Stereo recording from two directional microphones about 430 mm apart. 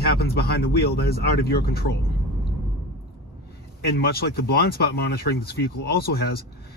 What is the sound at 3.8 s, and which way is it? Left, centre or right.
Speech, left.